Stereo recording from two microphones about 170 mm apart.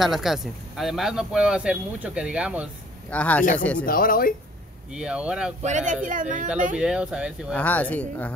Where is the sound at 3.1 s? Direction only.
10° left (ahead or behind).